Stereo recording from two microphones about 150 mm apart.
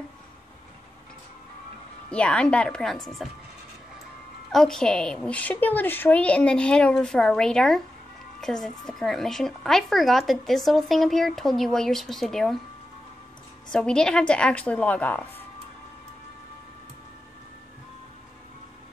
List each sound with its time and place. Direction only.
2.0 s speech: 5° left (ahead or behind)
4.5 s a woman's voice: 5° left (ahead or behind)
13.7 s a woman's voice: 5° left (ahead or behind)